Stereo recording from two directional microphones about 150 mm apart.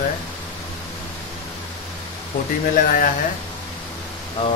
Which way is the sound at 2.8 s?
60° left (ahead or behind).